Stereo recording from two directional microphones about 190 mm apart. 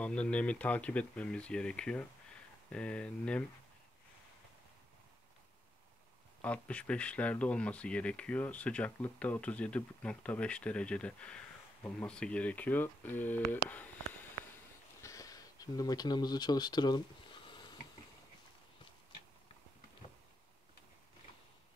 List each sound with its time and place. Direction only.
0.0 s speech: 5° left (ahead or behind)
6.4 s speech: 5° left (ahead or behind)
15.0 s a sound: 15° left (ahead or behind)